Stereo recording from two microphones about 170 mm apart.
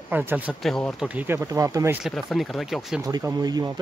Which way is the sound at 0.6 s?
Centre (ahead or behind).